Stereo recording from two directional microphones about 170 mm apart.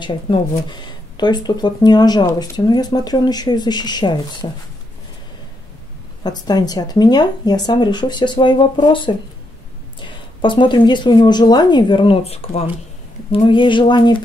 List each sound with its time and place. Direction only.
0.0 s speech: 25° left (ahead or behind)
6.2 s speech: 25° left (ahead or behind)